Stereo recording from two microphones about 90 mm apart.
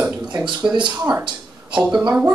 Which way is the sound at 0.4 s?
15° right (ahead or behind).